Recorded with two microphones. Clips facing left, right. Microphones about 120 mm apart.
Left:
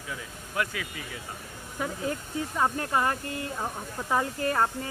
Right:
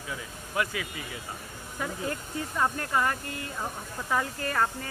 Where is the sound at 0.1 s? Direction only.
5° right (ahead or behind).